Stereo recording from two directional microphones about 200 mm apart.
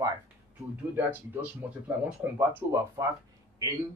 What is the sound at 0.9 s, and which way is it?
Speech, 10° right (ahead or behind).